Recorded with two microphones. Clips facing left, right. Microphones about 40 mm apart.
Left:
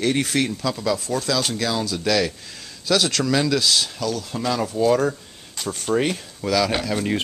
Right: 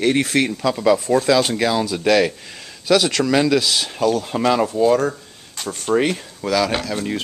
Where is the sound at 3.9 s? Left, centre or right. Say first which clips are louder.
Right 7 dB; right.